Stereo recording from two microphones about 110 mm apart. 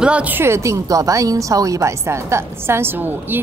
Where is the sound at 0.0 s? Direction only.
10° right (ahead or behind).